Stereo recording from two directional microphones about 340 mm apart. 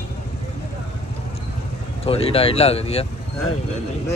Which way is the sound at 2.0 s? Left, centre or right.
Centre.